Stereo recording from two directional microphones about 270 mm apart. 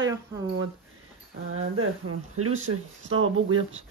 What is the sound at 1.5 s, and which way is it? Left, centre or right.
Speech, right.